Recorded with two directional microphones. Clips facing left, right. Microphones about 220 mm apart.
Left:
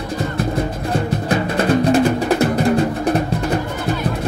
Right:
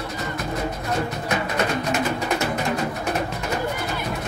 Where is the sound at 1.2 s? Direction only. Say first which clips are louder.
Left 8 dB; 30° left (ahead or behind).